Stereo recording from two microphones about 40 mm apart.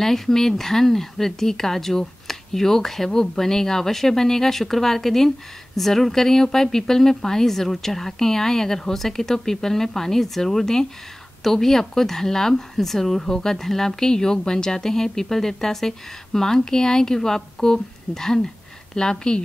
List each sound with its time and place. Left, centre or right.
0.0 s speech: centre